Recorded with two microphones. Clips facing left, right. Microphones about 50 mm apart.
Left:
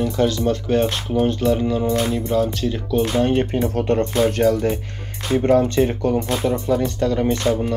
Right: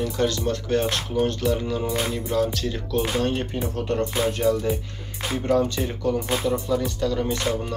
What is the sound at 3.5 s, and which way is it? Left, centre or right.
Speech, left.